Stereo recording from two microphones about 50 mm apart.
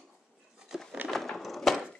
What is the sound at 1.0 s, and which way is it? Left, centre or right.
Wood, centre.